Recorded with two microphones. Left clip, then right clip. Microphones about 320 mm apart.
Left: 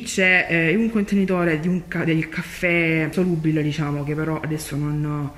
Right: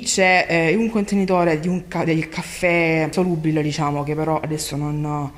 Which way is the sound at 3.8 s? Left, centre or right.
Right.